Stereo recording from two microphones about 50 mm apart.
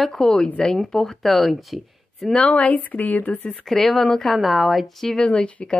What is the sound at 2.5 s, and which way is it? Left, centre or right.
Speech, left.